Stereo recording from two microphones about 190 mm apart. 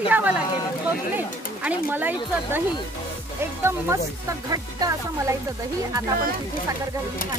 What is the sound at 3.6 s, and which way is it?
Speech, 15° right (ahead or behind).